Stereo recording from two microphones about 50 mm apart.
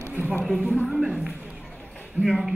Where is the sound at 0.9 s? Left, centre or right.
Centre.